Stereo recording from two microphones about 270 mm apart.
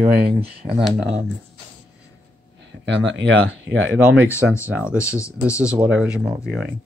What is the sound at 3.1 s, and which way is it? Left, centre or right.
Speech, right.